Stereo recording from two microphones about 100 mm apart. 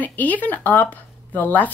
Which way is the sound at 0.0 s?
15° left (ahead or behind).